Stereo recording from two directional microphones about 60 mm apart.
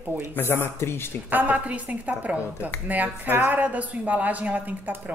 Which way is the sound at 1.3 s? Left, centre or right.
Right.